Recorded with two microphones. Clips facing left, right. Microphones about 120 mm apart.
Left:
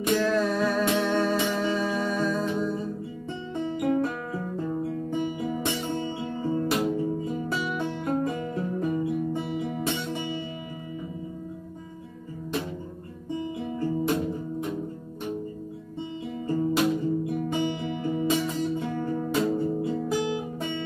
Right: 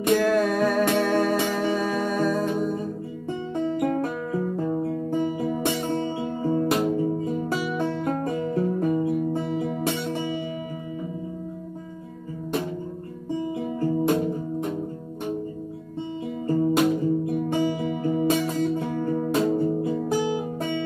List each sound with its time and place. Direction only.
0.0 s music: 55° right (ahead or behind)
14.0 s music: 25° right (ahead or behind)
16.4 s music: 45° right (ahead or behind)